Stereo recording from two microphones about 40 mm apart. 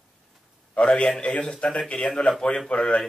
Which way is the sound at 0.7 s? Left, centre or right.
Left.